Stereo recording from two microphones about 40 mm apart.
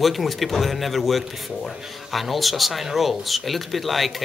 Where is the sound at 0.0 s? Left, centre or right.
Centre.